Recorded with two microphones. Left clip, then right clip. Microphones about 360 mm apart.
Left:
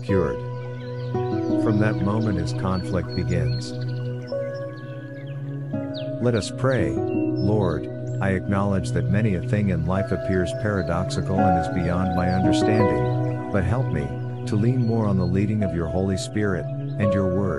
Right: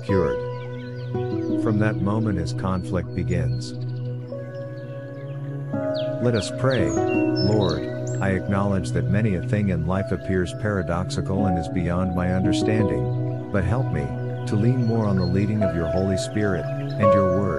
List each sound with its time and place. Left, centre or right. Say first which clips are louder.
0.1 s speech: right 1 dB; centre
5.9 s speech: left 1 dB; centre
6.9 s speech: right 3 dB; right
7.4 s speech: right 1 dB; centre